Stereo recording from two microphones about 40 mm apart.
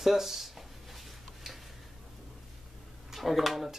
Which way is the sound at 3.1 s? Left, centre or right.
Centre.